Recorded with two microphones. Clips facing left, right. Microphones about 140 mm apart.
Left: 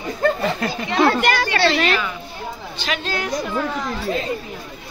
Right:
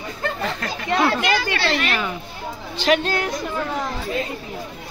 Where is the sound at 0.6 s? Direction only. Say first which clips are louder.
Left 5 dB; 10° left (ahead or behind).